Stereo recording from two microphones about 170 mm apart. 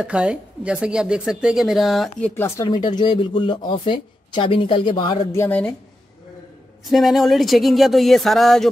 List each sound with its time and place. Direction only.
0.0 s speech: 5° right (ahead or behind); by 5.1 s 25° left (ahead or behind)
5.2 s speech: 15° left (ahead or behind)
6.8 s speech: centre (ahead or behind)